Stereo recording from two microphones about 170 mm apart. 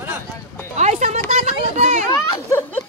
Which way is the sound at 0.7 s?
40° right (ahead or behind).